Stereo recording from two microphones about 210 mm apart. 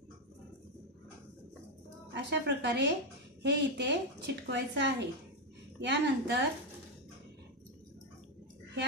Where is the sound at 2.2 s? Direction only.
55° right (ahead or behind).